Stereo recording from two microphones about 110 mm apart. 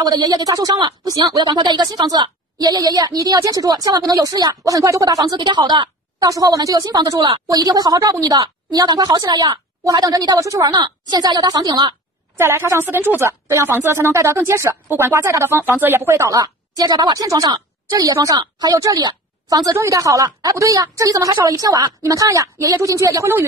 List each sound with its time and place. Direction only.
0.0 s a woman's voice: 35° right (ahead or behind)
12.4 s a woman's voice: 20° right (ahead or behind)